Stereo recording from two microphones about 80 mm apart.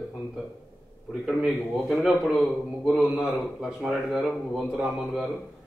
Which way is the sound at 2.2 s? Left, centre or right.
Centre.